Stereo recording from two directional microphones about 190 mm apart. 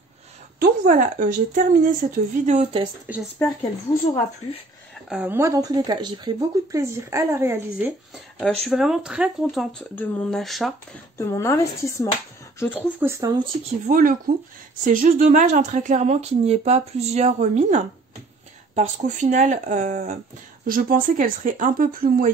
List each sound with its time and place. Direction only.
0.6 s speech: 45° right (ahead or behind)
3.1 s speech: 10° right (ahead or behind)
5.1 s speech: 10° right (ahead or behind)
8.1 s speech: 5° left (ahead or behind)
11.1 s speech: 15° left (ahead or behind)
13.0 s speech: 15° right (ahead or behind)
13.8 s speech: 50° right (ahead or behind)